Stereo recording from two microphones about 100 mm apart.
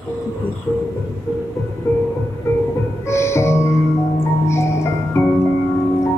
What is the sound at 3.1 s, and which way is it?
Music, 30° left (ahead or behind).